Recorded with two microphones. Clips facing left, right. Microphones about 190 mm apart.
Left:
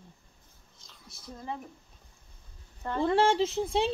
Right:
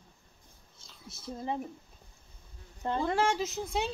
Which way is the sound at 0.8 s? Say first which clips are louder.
Right 4 dB; centre (ahead or behind).